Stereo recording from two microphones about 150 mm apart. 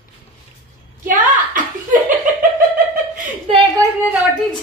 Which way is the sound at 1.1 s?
60° right (ahead or behind).